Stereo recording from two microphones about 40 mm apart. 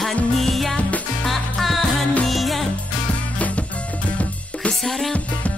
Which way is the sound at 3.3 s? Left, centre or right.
Left.